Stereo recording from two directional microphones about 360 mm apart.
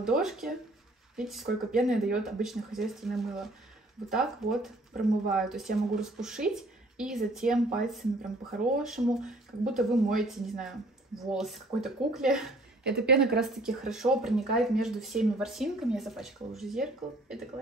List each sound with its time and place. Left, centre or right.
0.0 s speech: centre
8.7 s speech: centre